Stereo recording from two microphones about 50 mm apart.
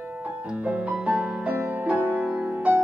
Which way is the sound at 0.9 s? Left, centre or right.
Right.